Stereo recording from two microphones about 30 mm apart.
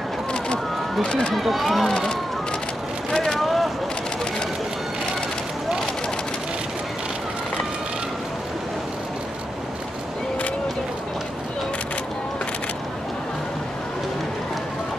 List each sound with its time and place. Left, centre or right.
1.0 s speech: left
1.5 s speech: centre
3.1 s vehicle: left
3.3 s a sound: centre